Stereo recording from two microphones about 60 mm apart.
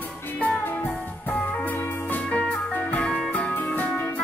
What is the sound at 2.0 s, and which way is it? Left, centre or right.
Music, left.